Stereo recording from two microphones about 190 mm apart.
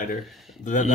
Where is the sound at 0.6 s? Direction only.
40° left (ahead or behind).